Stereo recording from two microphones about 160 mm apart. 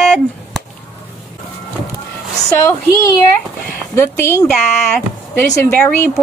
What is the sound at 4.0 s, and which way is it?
Speech, 15° left (ahead or behind).